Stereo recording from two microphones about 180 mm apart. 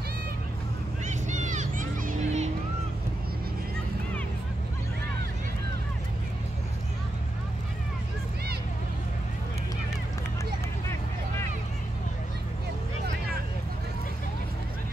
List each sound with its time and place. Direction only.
1.0 s music: 40° right (ahead or behind)